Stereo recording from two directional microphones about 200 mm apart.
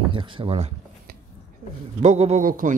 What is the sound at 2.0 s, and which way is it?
Speech, 35° right (ahead or behind).